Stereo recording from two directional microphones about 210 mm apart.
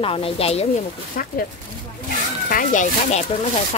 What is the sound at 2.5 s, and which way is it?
Speech, 40° left (ahead or behind).